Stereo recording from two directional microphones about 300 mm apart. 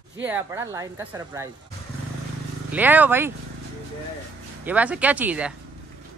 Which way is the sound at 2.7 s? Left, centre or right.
Centre.